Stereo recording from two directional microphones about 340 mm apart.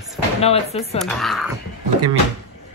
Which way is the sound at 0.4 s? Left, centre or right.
Centre.